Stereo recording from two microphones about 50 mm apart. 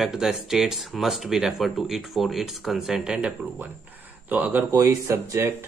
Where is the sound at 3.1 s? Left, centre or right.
Centre.